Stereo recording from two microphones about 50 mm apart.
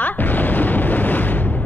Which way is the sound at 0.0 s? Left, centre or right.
Left.